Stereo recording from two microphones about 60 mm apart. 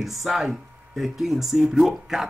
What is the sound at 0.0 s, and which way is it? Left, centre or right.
Speech, centre.